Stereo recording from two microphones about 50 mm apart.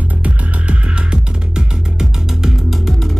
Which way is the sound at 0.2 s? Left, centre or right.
Right.